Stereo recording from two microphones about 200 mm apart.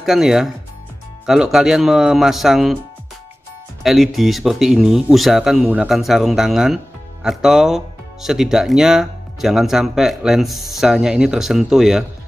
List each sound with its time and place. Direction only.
0.0 s speech: centre (ahead or behind)
3.8 s speech: centre (ahead or behind)